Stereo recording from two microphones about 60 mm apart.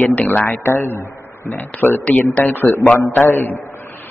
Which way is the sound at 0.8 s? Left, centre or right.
Left.